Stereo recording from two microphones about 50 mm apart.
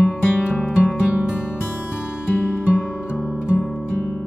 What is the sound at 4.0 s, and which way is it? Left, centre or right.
Music, left.